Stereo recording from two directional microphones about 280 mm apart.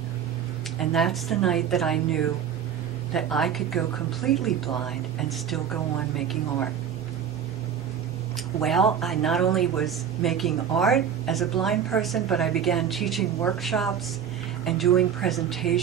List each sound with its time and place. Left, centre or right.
0.7 s a woman's voice: centre
8.5 s a woman's voice: centre